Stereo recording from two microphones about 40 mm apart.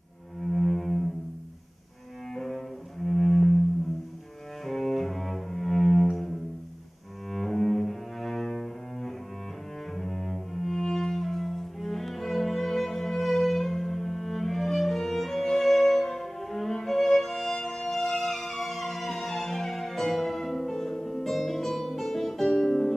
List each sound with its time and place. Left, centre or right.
0.4 s music: centre
2.3 s cello: centre
4.6 s cello: centre
6.0 s music: centre
7.3 s cello: centre
15.6 s music: centre